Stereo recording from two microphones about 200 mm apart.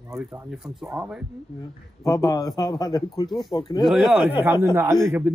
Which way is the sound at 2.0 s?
20° left (ahead or behind).